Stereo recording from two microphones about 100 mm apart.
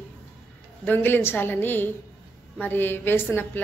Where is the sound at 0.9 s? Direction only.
20° left (ahead or behind).